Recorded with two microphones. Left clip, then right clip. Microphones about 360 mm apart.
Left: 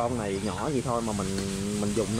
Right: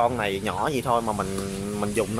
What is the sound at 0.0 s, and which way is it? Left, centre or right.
Speech, right.